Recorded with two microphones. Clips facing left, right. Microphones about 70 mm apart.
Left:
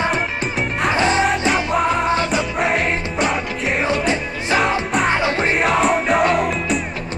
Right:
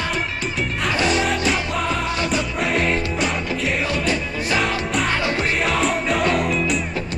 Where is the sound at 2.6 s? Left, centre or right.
Centre.